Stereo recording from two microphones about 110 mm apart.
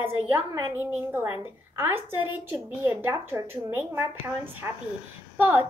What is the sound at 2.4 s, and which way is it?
A woman's voice, 20° right (ahead or behind).